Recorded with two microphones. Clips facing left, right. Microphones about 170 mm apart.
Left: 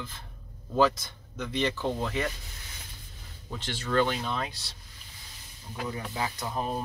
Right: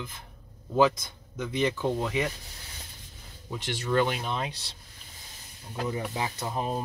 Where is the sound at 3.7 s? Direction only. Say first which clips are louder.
Right 1 dB; 15° right (ahead or behind).